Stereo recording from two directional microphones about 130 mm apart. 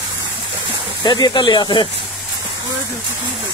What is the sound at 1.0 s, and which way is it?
Speech, 35° left (ahead or behind).